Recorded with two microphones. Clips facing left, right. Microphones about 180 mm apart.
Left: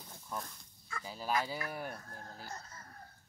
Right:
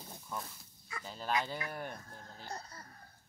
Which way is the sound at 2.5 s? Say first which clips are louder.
Right 3 dB; 35° right (ahead or behind).